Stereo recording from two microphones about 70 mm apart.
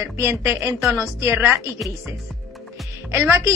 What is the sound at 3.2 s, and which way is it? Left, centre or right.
Speech, right.